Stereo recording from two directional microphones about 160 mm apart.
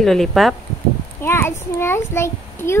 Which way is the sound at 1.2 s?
15° left (ahead or behind).